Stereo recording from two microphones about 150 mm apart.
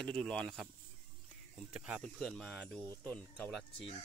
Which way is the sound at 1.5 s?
5° right (ahead or behind).